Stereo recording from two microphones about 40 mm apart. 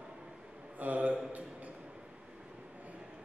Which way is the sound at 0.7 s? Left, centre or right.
Right.